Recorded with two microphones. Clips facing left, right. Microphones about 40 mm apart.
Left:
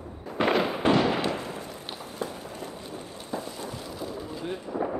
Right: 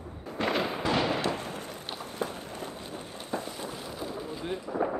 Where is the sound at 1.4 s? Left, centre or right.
Right.